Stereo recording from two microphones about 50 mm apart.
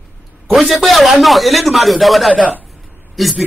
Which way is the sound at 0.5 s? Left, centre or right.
Centre.